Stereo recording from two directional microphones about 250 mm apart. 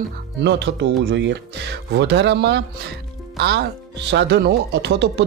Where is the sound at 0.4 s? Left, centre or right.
Right.